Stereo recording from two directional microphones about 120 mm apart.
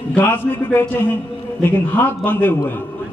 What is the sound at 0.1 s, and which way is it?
A man's voice, 15° left (ahead or behind).